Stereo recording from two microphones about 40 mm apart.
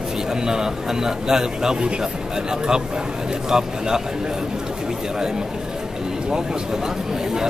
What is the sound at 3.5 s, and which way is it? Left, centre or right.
Speech, centre.